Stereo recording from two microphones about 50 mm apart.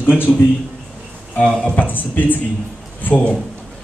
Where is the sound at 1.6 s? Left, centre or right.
Left.